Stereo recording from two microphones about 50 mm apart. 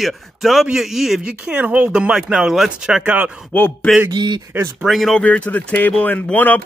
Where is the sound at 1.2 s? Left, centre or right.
Centre.